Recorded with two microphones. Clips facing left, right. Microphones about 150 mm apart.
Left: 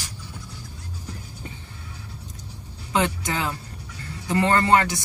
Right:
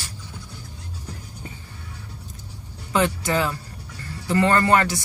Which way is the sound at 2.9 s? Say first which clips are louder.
Right 3 dB; 20° left (ahead or behind).